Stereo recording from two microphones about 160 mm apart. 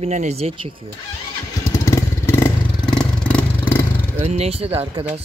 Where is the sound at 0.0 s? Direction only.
45° right (ahead or behind).